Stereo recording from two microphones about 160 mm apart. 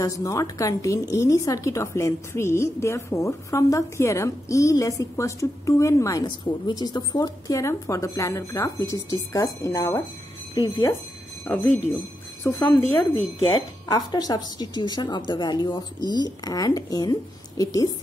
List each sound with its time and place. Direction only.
0.0 s a woman's voice: 20° left (ahead or behind)
11.4 s speech: 10° left (ahead or behind)
13.6 s a woman's voice: 25° left (ahead or behind)